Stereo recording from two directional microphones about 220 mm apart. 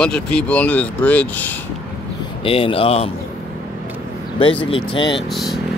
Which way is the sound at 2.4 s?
25° left (ahead or behind).